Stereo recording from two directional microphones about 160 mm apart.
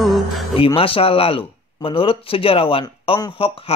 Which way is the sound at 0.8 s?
35° left (ahead or behind).